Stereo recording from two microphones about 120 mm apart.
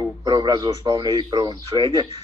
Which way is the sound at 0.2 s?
35° right (ahead or behind).